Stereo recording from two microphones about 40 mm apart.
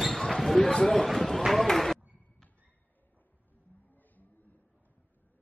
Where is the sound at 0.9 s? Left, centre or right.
Centre.